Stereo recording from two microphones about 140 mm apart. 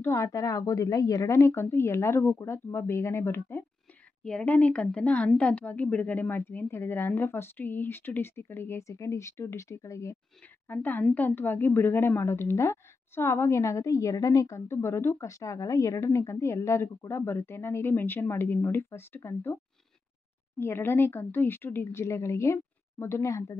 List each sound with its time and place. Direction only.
0.0 s a woman's voice: 20° left (ahead or behind)
4.2 s speech: 5° left (ahead or behind); by 23.6 s 20° left (ahead or behind)